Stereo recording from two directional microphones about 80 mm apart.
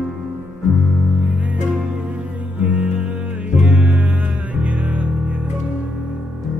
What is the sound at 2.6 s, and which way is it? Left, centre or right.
Music, centre.